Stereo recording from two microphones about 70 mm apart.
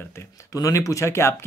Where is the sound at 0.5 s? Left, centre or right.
Left.